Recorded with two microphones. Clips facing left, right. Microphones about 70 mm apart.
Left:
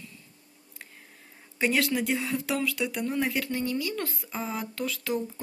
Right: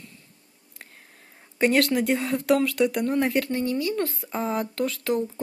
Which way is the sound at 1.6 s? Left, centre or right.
Right.